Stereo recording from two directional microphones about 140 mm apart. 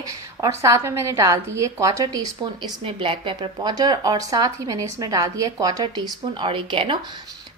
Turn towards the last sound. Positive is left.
turn(degrees=-40)  # may be behind; listen again after turning